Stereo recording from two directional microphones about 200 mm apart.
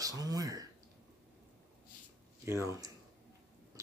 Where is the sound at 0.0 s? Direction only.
20° right (ahead or behind).